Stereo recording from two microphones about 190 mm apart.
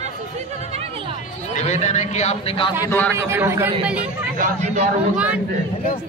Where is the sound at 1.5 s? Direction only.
35° left (ahead or behind).